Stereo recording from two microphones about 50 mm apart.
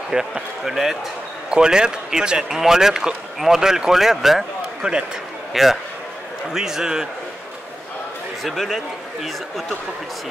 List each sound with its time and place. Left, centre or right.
0.1 s speech: centre
4.8 s speech: right
5.5 s a man's voice: centre
8.5 s a man's voice: centre